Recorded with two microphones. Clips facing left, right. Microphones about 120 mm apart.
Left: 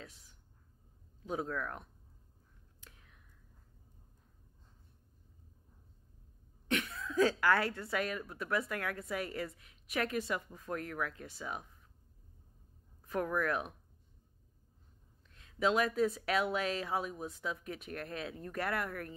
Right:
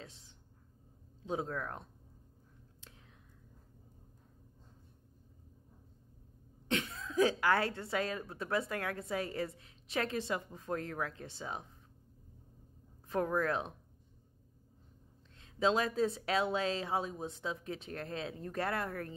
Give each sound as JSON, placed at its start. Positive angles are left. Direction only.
{"t": 0.0, "sound": "a sound", "side_deg": -25}
{"t": 1.2, "sound": "speech", "side_deg": -25}
{"t": 6.7, "sound": "speech", "side_deg": -25}
{"t": 13.1, "sound": "speech", "side_deg": -30}
{"t": 15.3, "sound": "speech", "side_deg": -30}